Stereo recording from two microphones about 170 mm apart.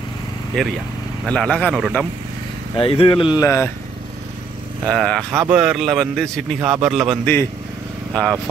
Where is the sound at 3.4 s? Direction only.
15° left (ahead or behind).